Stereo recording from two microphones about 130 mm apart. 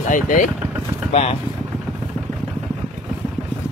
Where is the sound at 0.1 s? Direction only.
85° left.